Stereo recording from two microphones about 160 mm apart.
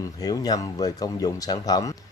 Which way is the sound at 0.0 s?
25° left (ahead or behind).